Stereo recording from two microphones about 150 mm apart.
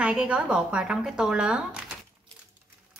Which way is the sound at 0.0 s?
5° right (ahead or behind).